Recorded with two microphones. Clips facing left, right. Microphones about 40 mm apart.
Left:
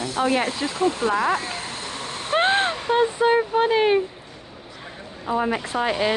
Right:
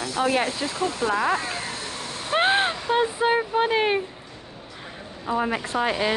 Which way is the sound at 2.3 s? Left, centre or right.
Centre.